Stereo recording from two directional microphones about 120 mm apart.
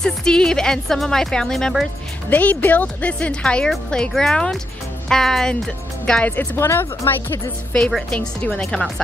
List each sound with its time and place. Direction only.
0.0 s speech: 5° left (ahead or behind)
2.2 s speech: 15° left (ahead or behind)
7.7 s speech: 5° left (ahead or behind)